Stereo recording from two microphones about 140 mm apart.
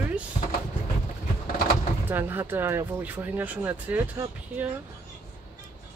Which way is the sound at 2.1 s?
15° right (ahead or behind).